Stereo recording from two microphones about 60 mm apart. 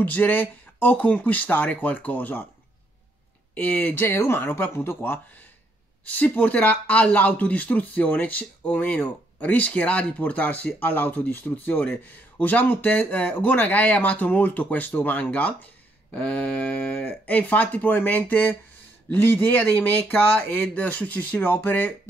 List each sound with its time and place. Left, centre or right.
0.0 s speech: left
3.5 s speech: left
3.9 s speech: left
6.0 s speech: left